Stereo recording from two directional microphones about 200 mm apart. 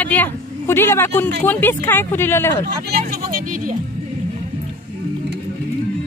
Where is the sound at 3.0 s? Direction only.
45° right (ahead or behind).